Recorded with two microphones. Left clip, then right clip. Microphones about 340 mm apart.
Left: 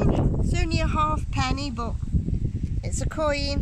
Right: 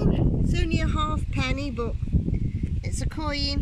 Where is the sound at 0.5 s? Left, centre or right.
Centre.